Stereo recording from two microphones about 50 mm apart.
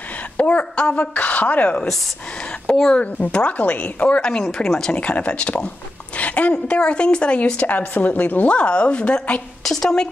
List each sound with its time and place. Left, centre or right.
0.4 s a sound: left
1.1 s speech: left
2.9 s a woman's voice: left
4.2 s speech: centre
4.9 s a woman's voice: left
8.5 s a woman's voice: left
9.6 s a woman's voice: centre